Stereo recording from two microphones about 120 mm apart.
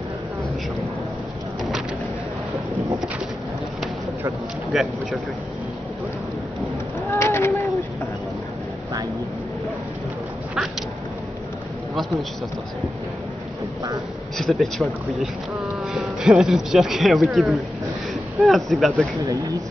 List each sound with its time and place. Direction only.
4.7 s speech: centre (ahead or behind)
7.1 s a sound: 20° left (ahead or behind)
11.9 s a man's voice: centre (ahead or behind)
14.4 s speech: centre (ahead or behind)
15.9 s speech: 5° right (ahead or behind)